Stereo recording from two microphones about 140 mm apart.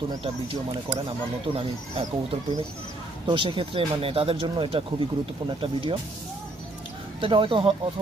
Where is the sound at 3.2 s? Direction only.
35° right (ahead or behind).